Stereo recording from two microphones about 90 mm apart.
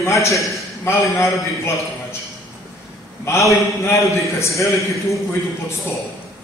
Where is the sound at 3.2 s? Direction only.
35° left (ahead or behind).